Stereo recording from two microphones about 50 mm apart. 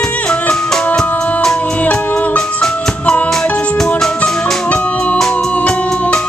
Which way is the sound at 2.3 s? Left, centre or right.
Centre.